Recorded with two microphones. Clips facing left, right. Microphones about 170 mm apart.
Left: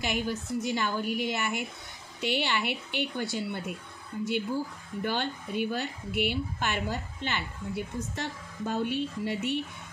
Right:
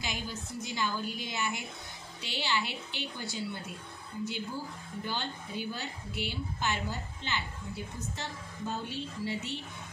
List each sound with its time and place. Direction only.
0.0 s a woman's voice: 60° left (ahead or behind)
5.0 s a woman's voice: 60° left (ahead or behind)